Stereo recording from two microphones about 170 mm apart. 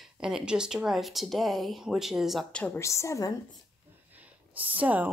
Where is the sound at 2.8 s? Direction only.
15° left (ahead or behind).